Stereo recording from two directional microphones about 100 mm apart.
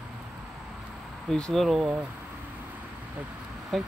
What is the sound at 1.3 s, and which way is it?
Speech, 5° left (ahead or behind).